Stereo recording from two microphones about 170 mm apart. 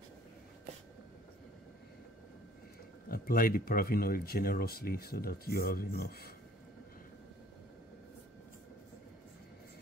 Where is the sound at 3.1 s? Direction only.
60° left (ahead or behind).